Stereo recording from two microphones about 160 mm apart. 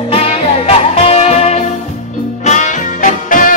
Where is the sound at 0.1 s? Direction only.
40° left (ahead or behind).